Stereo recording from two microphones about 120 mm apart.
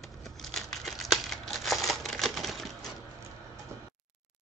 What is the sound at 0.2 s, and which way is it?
Crumpling, centre (ahead or behind).